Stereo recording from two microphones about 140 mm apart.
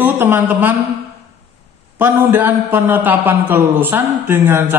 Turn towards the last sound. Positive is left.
turn(degrees=-15)  # may be behind; listen again after turning